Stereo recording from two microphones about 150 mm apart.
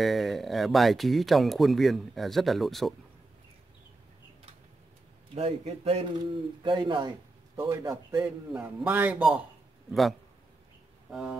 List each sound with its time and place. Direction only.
0.0 s speech: centre (ahead or behind)
5.3 s a man's voice: 45° right (ahead or behind)
7.5 s a man's voice: 20° right (ahead or behind)
11.1 s speech: centre (ahead or behind)